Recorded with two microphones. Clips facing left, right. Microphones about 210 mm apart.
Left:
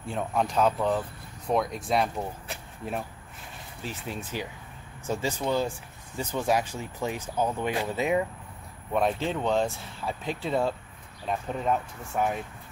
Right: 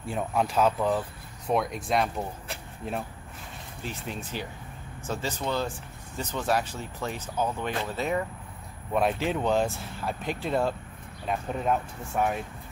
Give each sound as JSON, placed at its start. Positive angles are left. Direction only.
{"t": 0.1, "sound": "speech", "side_deg": 0}
{"t": 8.9, "sound": "speech", "side_deg": -5}